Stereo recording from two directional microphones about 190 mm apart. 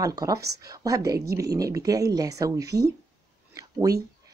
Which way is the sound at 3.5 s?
20° right (ahead or behind).